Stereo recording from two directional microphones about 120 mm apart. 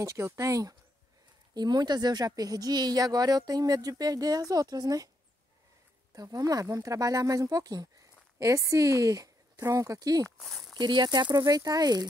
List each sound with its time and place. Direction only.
0.0 s a woman's voice: 25° right (ahead or behind)
6.1 s a woman's voice: 30° right (ahead or behind)